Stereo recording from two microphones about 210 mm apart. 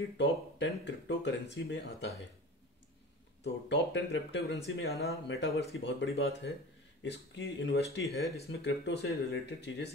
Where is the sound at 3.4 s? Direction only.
55° left (ahead or behind).